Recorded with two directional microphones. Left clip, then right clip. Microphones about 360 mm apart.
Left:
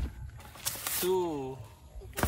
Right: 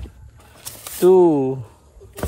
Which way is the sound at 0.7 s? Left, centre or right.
Centre.